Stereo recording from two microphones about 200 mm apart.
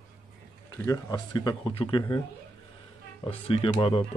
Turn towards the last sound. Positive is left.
turn(degrees=25)  # may be behind; listen again after turning